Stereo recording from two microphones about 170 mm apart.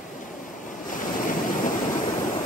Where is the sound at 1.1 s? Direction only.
50° left (ahead or behind).